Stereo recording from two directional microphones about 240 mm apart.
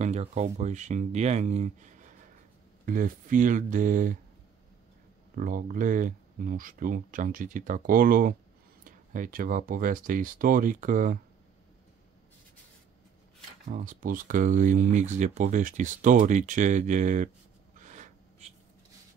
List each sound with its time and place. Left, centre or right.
0.0 s speech: right
5.3 s speech: right
13.7 s speech: right
17.7 s a sound: right